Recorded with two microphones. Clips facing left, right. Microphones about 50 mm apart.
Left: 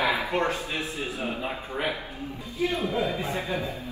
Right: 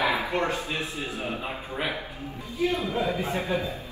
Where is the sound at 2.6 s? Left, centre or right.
Left.